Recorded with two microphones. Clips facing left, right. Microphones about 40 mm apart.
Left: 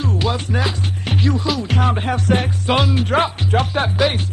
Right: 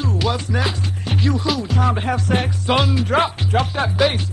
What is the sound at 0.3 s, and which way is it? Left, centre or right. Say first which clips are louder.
Music: even; centre.